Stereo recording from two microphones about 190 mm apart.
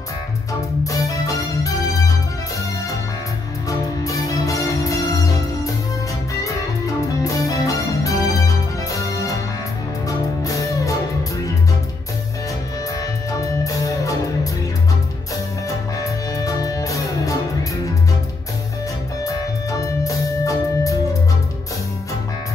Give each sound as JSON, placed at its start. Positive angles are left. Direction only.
{"t": 0.8, "sound": "music", "side_deg": 15}
{"t": 4.0, "sound": "music", "side_deg": 15}
{"t": 7.2, "sound": "music", "side_deg": 15}
{"t": 13.3, "sound": "music", "side_deg": 15}
{"t": 16.0, "sound": "music", "side_deg": 20}
{"t": 19.2, "sound": "music", "side_deg": 15}